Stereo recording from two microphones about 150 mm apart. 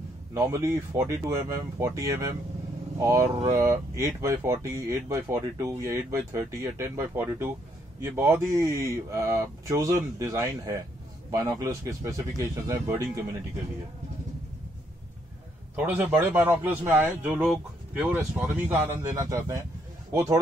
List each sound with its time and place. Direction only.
0.3 s speech: 20° right (ahead or behind)
15.7 s speech: 10° right (ahead or behind)